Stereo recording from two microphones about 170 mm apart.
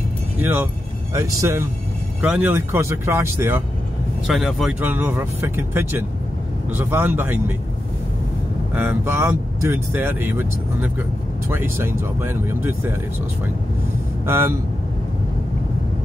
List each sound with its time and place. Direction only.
0.4 s speech: 10° right (ahead or behind)
4.3 s speech: centre (ahead or behind)
8.7 s speech: 15° right (ahead or behind)
14.2 s speech: 15° right (ahead or behind)